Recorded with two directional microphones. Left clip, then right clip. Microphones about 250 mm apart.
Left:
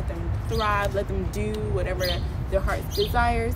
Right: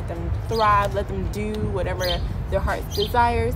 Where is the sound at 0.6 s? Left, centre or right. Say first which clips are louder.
Right 6 dB; centre.